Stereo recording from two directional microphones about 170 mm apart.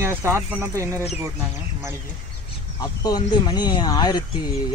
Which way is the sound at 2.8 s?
20° left (ahead or behind).